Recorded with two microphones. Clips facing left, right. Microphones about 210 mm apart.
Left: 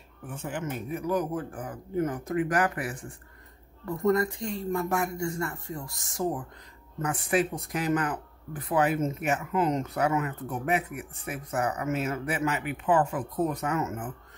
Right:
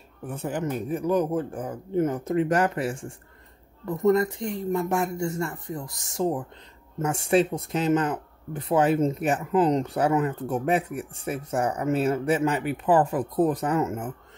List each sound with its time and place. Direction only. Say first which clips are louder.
0.3 s speech: right 5 dB; 35° right (ahead or behind)